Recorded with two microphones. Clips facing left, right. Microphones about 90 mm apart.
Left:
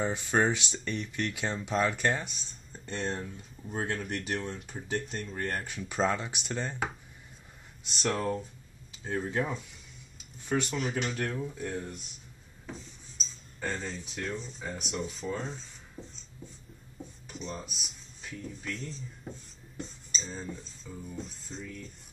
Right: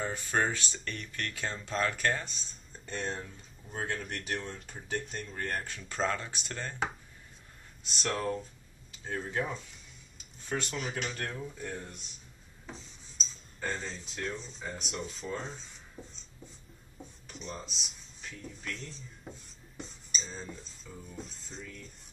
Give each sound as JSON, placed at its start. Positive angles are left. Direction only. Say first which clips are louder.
{"t": 0.0, "sound": "speech", "louder": "left 4 dB", "side_deg": 15}
{"t": 0.7, "sound": "speech", "louder": "left 5 dB", "side_deg": 5}
{"t": 7.8, "sound": "speech", "louder": "left 2 dB", "side_deg": 0}
{"t": 13.6, "sound": "speech", "louder": "left 1 dB", "side_deg": -5}
{"t": 13.8, "sound": "speech", "louder": "left 1 dB", "side_deg": 10}
{"t": 17.3, "sound": "speech", "louder": "left 2 dB", "side_deg": 0}